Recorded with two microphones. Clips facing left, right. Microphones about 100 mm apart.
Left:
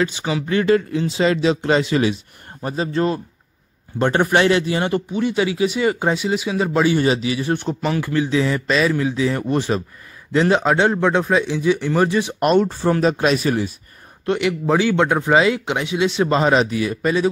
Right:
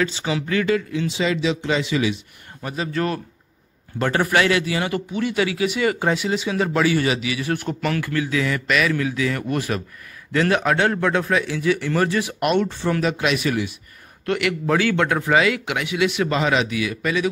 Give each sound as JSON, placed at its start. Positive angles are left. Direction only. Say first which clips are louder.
{"t": 0.0, "sound": "speech", "louder": "left 2 dB", "side_deg": 20}
{"t": 2.6, "sound": "speech", "louder": "left 4 dB", "side_deg": 35}
{"t": 12.4, "sound": "speech", "louder": "left 5 dB", "side_deg": 35}
{"t": 14.2, "sound": "speech", "louder": "left 3 dB", "side_deg": 20}